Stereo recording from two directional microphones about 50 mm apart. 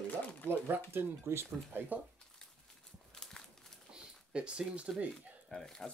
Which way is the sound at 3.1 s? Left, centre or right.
Centre.